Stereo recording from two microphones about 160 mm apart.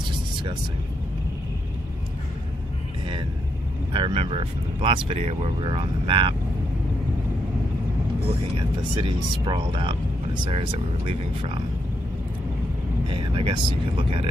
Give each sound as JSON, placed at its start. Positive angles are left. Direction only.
{"t": 3.9, "sound": "speech", "side_deg": -35}
{"t": 8.3, "sound": "speech", "side_deg": -35}
{"t": 13.1, "sound": "speech", "side_deg": -35}